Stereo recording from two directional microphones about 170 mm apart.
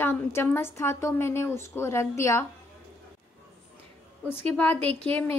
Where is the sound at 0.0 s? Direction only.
15° left (ahead or behind).